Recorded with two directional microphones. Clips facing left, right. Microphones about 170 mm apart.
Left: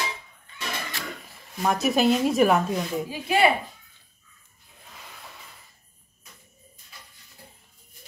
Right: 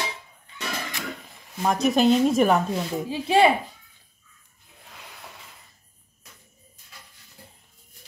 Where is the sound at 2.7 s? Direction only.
30° right (ahead or behind).